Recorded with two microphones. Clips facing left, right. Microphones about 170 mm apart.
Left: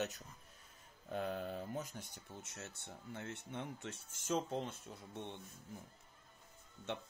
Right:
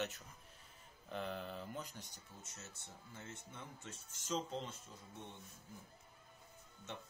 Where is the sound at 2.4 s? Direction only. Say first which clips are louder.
Left 5 dB; 70° left (ahead or behind).